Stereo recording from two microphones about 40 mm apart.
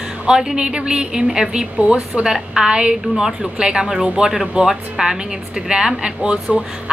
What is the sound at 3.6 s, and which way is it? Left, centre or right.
A woman's voice, right.